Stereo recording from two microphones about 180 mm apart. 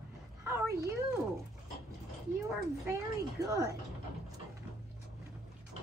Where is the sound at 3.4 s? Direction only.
15° right (ahead or behind).